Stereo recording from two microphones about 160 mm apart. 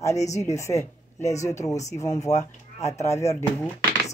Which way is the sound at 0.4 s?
20° left (ahead or behind).